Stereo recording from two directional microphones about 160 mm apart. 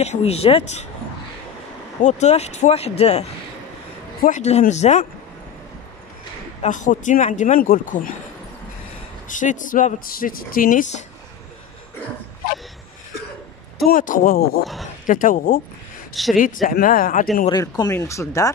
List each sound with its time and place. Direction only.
0.0 s speech: 40° left (ahead or behind)
2.0 s speech: 45° left (ahead or behind)
6.6 s speech: 50° left (ahead or behind)
9.3 s speech: 55° left (ahead or behind)
13.8 s speech: 55° left (ahead or behind)
15.0 s speech: 55° left (ahead or behind)
16.1 s speech: centre (ahead or behind)
16.6 s speech: 60° left (ahead or behind)
17.5 s speech: 25° left (ahead or behind)